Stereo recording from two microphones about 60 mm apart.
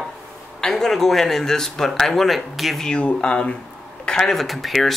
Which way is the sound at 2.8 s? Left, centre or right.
Centre.